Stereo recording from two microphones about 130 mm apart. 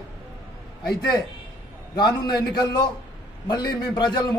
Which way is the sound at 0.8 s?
35° left (ahead or behind).